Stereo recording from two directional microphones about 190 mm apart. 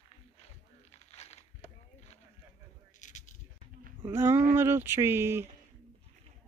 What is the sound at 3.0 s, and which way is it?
Coin, 40° left (ahead or behind).